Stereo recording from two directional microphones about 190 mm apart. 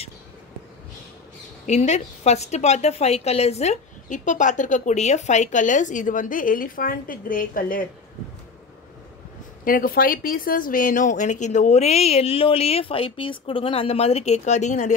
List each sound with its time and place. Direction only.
1.7 s a woman's voice: 35° left (ahead or behind)
9.7 s a woman's voice: 50° left (ahead or behind)